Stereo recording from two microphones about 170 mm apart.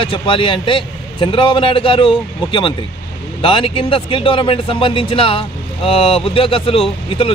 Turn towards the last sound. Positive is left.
turn(degrees=35)  # may be behind; listen again after turning